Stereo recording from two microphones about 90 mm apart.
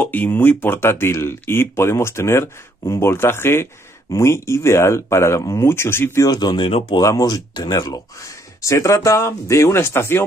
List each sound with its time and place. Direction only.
0.0 s speech: 20° left (ahead or behind)
6.2 s speech: 50° left (ahead or behind); by 7.0 s 70° left (ahead or behind)
7.0 s speech: 45° left (ahead or behind); by 10.2 s 25° left (ahead or behind)